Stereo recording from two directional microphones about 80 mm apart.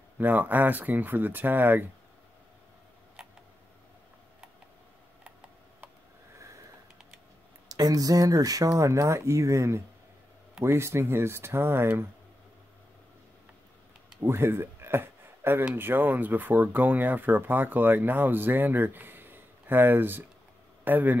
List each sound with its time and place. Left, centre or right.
0.2 s speech: right
3.2 s camera: centre
7.6 s speech: right
14.2 s speech: right